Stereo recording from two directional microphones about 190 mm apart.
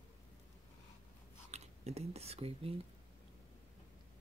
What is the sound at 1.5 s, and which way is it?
Speech, 35° right (ahead or behind).